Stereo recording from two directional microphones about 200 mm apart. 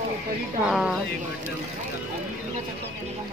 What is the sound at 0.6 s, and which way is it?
Speech, centre (ahead or behind).